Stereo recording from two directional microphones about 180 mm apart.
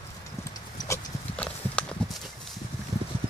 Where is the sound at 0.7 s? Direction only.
20° left (ahead or behind).